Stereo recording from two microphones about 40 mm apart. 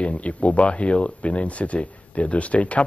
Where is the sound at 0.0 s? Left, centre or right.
Left.